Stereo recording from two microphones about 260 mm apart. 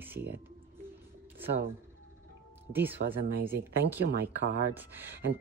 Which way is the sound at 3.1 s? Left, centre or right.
Right.